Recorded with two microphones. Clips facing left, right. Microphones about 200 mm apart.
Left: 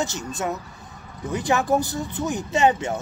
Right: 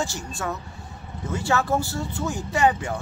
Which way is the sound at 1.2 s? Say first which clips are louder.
Left 2 dB; 15° left (ahead or behind).